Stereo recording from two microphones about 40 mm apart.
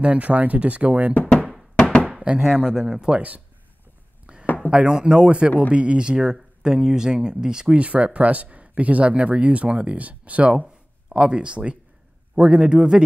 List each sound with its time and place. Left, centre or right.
0.0 s speech: right
1.8 s a sound: left
2.3 s speech: centre
3.2 s speech: right
4.3 s a sound: right
4.6 s speech: right
7.7 s speech: right
11.1 s speech: right